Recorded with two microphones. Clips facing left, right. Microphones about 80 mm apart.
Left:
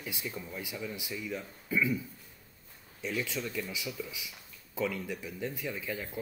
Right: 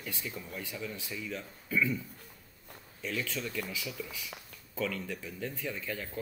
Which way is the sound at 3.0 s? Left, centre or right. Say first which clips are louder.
Left 1 dB; centre.